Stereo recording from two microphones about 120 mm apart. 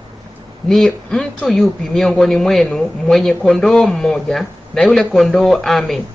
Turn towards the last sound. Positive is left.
turn(degrees=0)  # may be behind; listen again after turning